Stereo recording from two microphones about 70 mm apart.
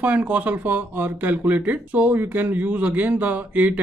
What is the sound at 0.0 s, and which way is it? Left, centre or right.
Speech, right.